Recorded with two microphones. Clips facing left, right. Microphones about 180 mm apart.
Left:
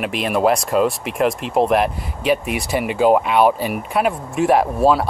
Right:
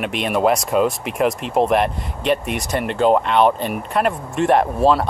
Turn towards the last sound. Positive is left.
turn(degrees=5)  # may be behind; listen again after turning